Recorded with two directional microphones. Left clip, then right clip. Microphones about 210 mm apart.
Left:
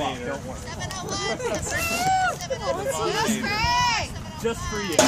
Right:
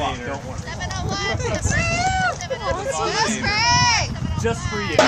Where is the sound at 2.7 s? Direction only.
40° right (ahead or behind).